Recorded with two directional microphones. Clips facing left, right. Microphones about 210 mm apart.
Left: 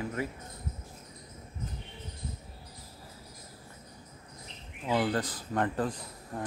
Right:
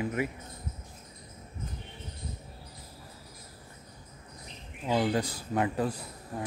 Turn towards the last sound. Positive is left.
turn(degrees=-10)  # may be behind; listen again after turning